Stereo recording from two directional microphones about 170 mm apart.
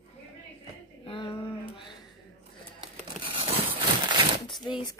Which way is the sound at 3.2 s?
30° right (ahead or behind).